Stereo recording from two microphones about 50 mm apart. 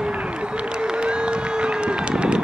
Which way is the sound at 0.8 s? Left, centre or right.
Centre.